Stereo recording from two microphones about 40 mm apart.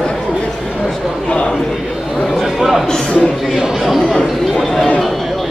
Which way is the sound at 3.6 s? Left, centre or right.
Centre.